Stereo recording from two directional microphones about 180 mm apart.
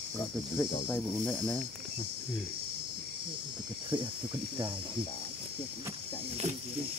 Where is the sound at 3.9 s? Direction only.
25° right (ahead or behind).